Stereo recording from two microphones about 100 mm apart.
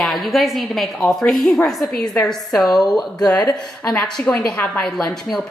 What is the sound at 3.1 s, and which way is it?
Speech, 40° left (ahead or behind).